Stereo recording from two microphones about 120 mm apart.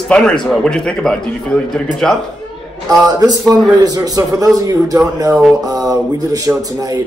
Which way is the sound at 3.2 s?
30° right (ahead or behind).